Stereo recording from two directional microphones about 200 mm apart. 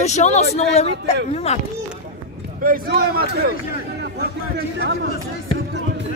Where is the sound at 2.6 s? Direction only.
50° right (ahead or behind).